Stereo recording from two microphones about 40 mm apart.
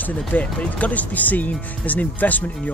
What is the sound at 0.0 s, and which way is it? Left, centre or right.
Speech, left.